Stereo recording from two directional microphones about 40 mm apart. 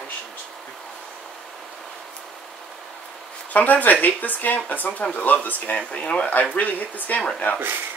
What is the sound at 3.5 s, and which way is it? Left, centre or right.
Speech, left.